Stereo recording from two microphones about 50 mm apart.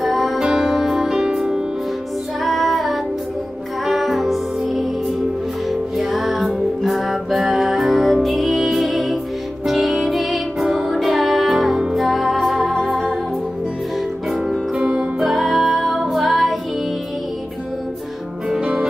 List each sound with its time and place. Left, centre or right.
0.0 s music: centre
2.4 s music: centre
15.1 s music: centre
18.6 s music: right